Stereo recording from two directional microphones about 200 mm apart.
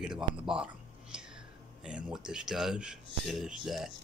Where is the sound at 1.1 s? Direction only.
5° right (ahead or behind).